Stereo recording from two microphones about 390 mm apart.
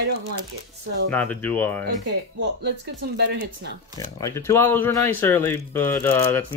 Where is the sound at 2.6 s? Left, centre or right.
Right.